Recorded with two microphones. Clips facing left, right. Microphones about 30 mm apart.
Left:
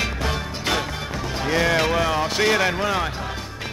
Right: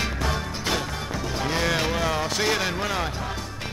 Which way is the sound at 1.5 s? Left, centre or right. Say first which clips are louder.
Left 5 dB; centre.